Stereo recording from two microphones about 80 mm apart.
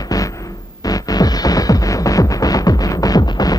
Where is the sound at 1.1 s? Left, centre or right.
Left.